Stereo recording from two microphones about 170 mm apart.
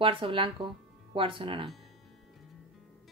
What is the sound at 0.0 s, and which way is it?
A woman's voice, 30° right (ahead or behind).